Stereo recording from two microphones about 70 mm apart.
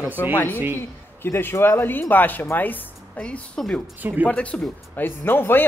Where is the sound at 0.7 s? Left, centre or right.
Left; by 3.6 s centre.